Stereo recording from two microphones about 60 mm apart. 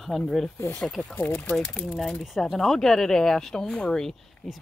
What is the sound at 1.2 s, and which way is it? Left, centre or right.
Speech, left.